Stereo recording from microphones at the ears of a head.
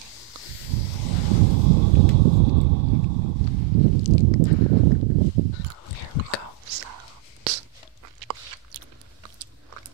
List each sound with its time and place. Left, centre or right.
0.7 s a sound: right
6.6 s whispering: right
8.2 s biting: right